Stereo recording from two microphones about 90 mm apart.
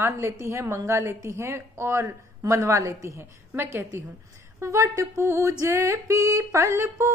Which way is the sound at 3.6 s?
25° right (ahead or behind).